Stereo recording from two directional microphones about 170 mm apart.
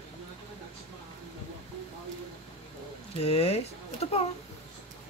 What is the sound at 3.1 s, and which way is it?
Speech, 35° left (ahead or behind).